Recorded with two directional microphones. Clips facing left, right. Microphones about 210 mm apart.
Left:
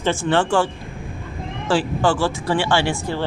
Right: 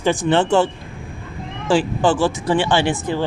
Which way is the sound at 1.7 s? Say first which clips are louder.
Right 2 dB; 20° right (ahead or behind).